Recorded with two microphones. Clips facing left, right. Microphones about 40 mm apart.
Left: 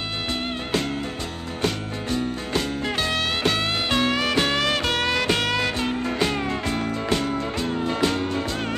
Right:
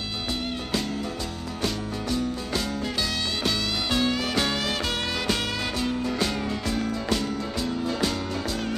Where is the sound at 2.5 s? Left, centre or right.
Left.